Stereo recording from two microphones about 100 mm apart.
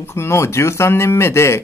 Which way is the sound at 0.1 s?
25° left (ahead or behind).